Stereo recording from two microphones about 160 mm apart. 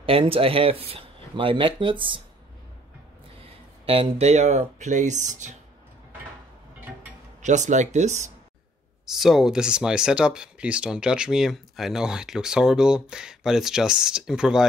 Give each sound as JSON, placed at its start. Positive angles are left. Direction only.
{"t": 0.0, "sound": "speech", "side_deg": -35}
{"t": 3.8, "sound": "speech", "side_deg": -35}
{"t": 7.4, "sound": "speech", "side_deg": -50}
{"t": 9.0, "sound": "speech", "side_deg": 0}